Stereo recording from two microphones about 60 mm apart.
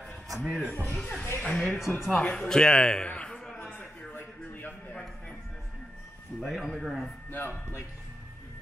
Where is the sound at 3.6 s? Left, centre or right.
Left.